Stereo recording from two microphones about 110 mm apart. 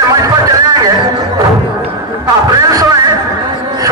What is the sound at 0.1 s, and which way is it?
Music, 35° right (ahead or behind).